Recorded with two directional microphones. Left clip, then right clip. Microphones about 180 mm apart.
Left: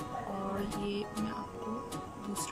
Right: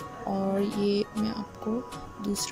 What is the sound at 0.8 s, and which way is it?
Music, 25° right (ahead or behind).